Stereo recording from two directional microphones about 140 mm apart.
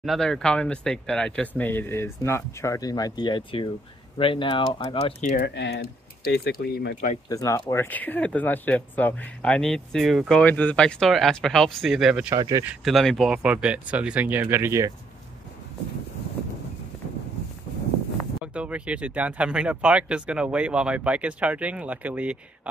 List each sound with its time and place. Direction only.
0.0 s speech: centre (ahead or behind); by 5.1 s 35° left (ahead or behind)
5.2 s speech: 65° left (ahead or behind)
6.2 s speech: 90° left
7.2 s speech: 25° left (ahead or behind); by 10.4 s centre (ahead or behind)
10.4 s speech: 10° left (ahead or behind)
12.3 s speech: 25° right (ahead or behind)
12.8 s speech: centre (ahead or behind); by 14.9 s 20° right (ahead or behind)
18.4 s speech: 10° right (ahead or behind)